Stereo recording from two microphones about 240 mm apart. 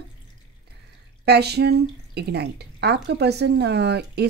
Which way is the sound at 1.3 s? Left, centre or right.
Right.